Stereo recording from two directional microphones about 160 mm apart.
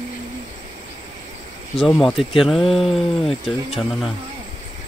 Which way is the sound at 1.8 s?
Centre (ahead or behind).